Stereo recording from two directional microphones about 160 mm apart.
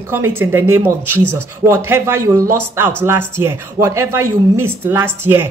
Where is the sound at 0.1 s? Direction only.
15° right (ahead or behind).